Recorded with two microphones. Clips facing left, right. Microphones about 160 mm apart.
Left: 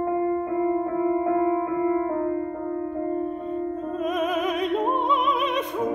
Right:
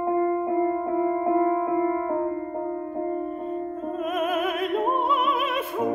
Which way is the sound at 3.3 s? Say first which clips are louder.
Left 1 dB; 45° right (ahead or behind).